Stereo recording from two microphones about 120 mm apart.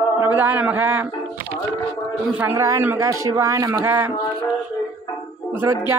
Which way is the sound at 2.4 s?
20° right (ahead or behind).